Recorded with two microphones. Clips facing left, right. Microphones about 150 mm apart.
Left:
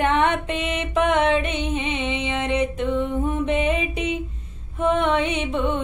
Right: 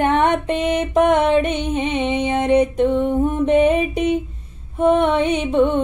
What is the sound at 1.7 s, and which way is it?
Music, 45° right (ahead or behind).